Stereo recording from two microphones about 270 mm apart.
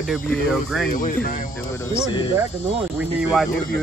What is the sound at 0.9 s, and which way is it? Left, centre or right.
Speech, left.